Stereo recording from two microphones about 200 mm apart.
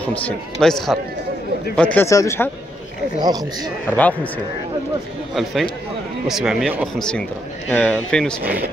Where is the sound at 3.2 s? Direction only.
20° right (ahead or behind).